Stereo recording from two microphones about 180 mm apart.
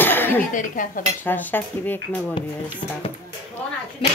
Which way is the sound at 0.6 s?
45° left (ahead or behind).